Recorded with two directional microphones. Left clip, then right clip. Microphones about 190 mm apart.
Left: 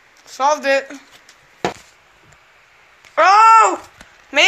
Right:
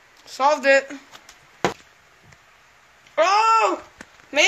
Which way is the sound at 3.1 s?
5° right (ahead or behind).